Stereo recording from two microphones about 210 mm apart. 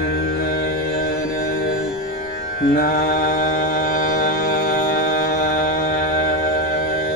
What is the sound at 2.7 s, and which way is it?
Mantra, 45° left (ahead or behind).